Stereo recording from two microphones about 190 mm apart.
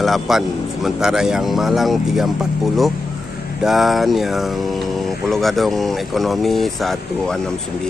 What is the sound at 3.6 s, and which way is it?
Speech, centre (ahead or behind).